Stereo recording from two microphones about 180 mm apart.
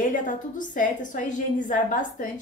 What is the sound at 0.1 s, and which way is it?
A woman's voice, 45° left (ahead or behind).